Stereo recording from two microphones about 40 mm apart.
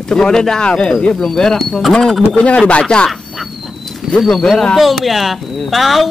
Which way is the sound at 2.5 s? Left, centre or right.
Left.